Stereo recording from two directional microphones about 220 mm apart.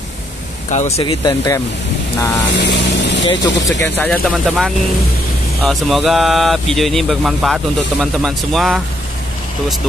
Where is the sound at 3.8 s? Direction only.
5° left (ahead or behind).